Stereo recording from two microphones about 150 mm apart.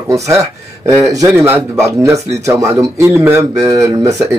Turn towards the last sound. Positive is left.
turn(degrees=-20)  # may be behind; listen again after turning